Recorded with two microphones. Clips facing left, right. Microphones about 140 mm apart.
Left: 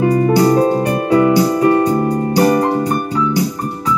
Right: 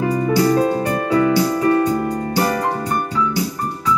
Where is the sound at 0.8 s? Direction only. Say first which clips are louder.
Left 4 dB; 20° left (ahead or behind).